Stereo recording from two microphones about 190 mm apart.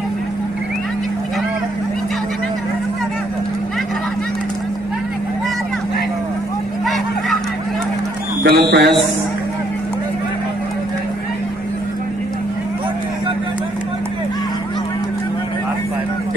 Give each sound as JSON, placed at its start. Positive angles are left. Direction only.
{"t": 8.5, "sound": "speech", "side_deg": -60}